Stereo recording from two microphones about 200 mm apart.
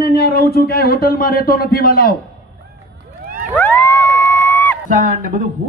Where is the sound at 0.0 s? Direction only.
50° left (ahead or behind).